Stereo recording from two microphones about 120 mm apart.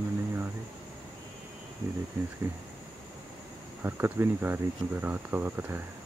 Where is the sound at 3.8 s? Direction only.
20° right (ahead or behind).